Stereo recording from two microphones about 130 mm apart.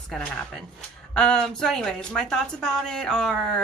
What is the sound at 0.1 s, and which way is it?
A woman's voice, 5° left (ahead or behind).